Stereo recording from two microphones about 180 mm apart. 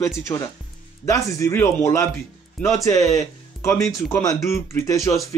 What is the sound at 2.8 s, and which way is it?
Speech, 35° right (ahead or behind).